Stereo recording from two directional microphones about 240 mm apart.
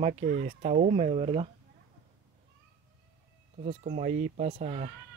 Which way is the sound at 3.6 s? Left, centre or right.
Right.